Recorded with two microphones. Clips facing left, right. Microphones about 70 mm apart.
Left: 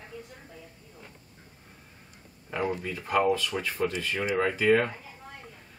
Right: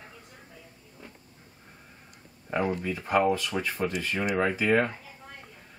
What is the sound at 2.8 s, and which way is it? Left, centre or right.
Speech, right.